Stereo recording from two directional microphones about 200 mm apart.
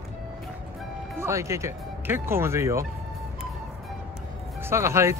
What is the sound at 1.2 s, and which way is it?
Speech, 15° right (ahead or behind).